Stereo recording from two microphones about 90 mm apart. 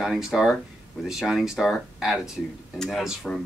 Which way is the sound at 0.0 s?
5° right (ahead or behind).